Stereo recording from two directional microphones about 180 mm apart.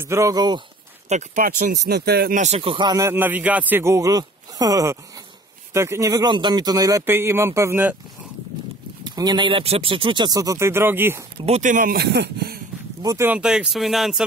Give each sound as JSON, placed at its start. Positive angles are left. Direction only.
{"t": 0.0, "sound": "speech", "side_deg": -15}
{"t": 1.0, "sound": "speech", "side_deg": -45}
{"t": 1.9, "sound": "speech", "side_deg": -60}
{"t": 2.4, "sound": "a man's voice", "side_deg": -35}
{"t": 9.0, "sound": "speech", "side_deg": -20}
{"t": 11.4, "sound": "speech", "side_deg": -40}
{"t": 13.0, "sound": "speech", "side_deg": -15}